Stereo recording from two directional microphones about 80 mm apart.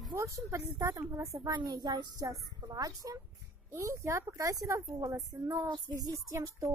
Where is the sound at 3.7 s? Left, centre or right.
Right.